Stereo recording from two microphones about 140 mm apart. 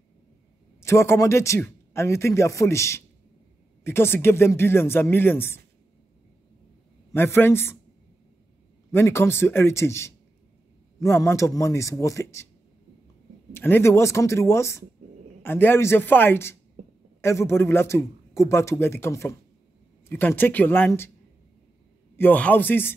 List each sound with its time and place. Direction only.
0.7 s speech: 20° left (ahead or behind)
7.1 s speech: 15° left (ahead or behind)
8.9 s speech: 20° left (ahead or behind)
13.5 s speech: 15° left (ahead or behind)
22.1 s speech: 15° left (ahead or behind)